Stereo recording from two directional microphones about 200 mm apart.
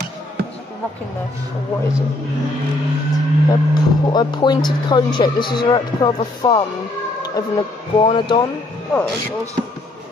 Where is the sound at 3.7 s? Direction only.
20° left (ahead or behind).